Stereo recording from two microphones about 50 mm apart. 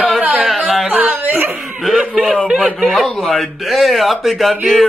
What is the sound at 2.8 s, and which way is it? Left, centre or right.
Speech, centre.